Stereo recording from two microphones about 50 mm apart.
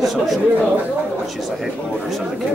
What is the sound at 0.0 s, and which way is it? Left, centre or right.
Speech, centre.